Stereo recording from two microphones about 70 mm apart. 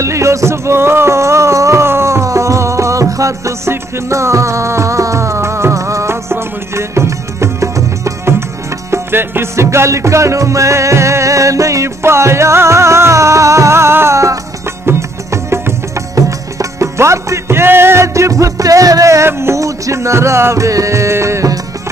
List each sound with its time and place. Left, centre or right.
0.0 s music: right
16.2 s music: right